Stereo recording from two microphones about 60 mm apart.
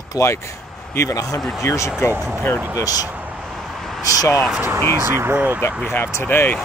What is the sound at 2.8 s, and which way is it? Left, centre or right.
Speech, left.